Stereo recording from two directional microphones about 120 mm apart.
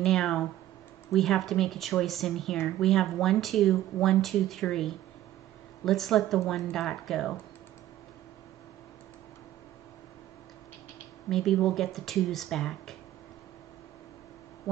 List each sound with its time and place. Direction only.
0.0 s speech: 5° left (ahead or behind)
11.2 s speech: 5° left (ahead or behind)